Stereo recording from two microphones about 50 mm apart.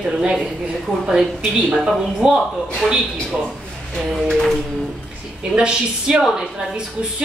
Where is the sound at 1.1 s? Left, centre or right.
Centre.